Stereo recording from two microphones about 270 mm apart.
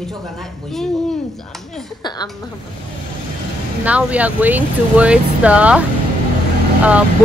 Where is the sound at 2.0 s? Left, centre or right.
Centre.